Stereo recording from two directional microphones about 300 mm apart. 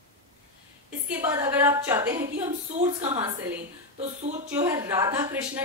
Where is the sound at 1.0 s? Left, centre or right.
Centre.